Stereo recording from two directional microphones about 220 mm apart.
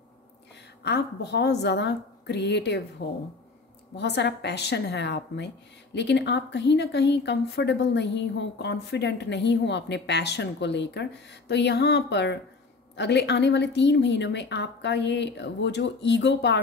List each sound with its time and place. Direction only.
0.8 s speech: 50° left (ahead or behind)